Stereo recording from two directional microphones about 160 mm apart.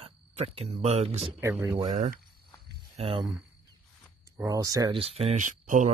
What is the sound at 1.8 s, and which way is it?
Speech, 50° right (ahead or behind).